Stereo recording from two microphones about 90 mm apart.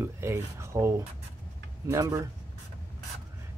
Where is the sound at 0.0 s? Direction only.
30° right (ahead or behind).